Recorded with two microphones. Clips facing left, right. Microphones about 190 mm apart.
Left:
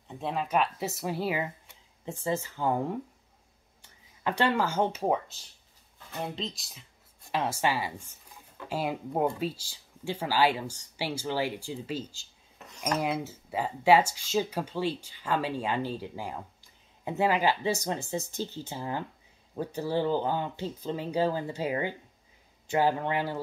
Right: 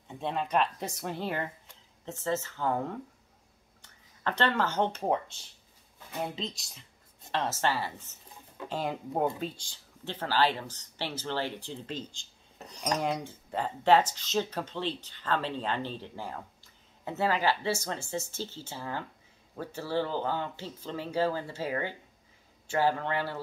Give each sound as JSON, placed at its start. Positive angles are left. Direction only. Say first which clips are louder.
{"t": 0.1, "sound": "speech", "louder": "left 1 dB", "side_deg": 0}
{"t": 4.2, "sound": "speech", "louder": "left 2 dB", "side_deg": 10}
{"t": 7.2, "sound": "speech", "louder": "left 1 dB", "side_deg": 10}
{"t": 12.5, "sound": "cutlery", "louder": "left 1 dB", "side_deg": -35}
{"t": 13.0, "sound": "speech", "louder": "left 1 dB", "side_deg": 5}